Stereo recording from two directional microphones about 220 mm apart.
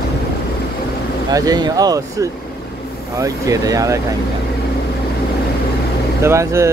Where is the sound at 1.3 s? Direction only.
15° right (ahead or behind).